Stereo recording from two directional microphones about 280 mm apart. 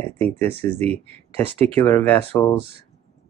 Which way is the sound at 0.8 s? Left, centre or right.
Right.